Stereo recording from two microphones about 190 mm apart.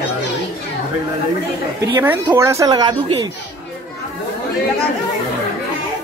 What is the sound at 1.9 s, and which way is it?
Speech, 10° right (ahead or behind).